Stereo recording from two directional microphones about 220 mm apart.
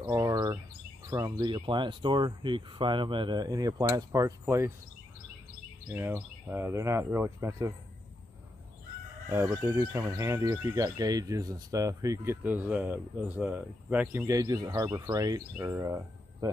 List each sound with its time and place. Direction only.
0.0 s turkey: 15° right (ahead or behind)
1.1 s speech: 15° right (ahead or behind)
5.9 s speech: 10° right (ahead or behind)
9.3 s speech: 10° right (ahead or behind)